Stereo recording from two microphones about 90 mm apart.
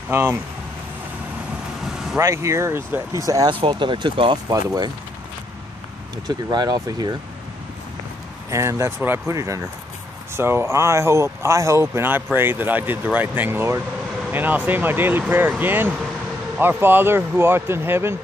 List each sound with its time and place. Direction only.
0.1 s speech: 30° right (ahead or behind)
2.1 s speech: 35° right (ahead or behind)
3.6 s speech: 65° right (ahead or behind)
6.2 s speech: 50° right (ahead or behind)
8.5 s speech: 35° right (ahead or behind)